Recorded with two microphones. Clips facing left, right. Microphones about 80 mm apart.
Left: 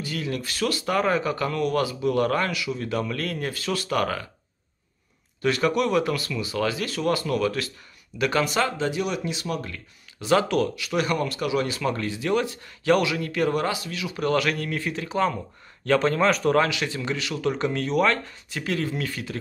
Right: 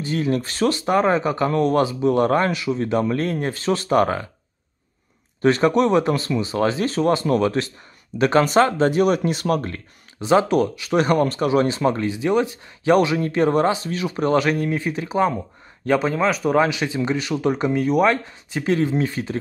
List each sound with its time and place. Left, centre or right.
0.0 s speech: right
5.4 s speech: right
10.2 s speech: right
10.9 s speech: right
14.2 s speech: right; by 16.6 s centre
16.6 s speech: right